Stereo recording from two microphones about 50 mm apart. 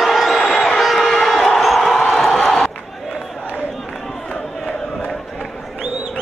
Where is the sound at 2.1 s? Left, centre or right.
Centre.